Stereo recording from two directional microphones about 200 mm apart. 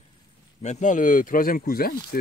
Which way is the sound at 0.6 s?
35° left (ahead or behind).